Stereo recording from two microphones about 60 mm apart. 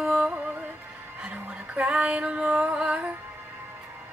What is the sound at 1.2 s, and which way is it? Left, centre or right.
Music, centre.